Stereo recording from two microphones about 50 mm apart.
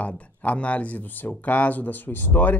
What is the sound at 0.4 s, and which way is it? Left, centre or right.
Speech, left.